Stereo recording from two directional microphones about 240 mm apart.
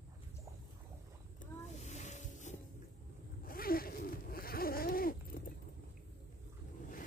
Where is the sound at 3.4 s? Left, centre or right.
Left.